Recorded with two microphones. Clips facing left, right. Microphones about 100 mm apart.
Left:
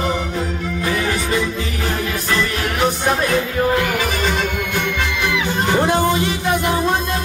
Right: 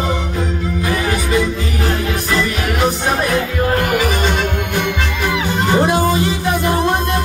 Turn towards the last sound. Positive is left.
turn(degrees=-15)  # may be behind; listen again after turning